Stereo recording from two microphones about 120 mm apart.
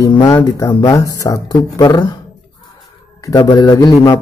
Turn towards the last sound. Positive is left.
turn(degrees=30)  # may be behind; listen again after turning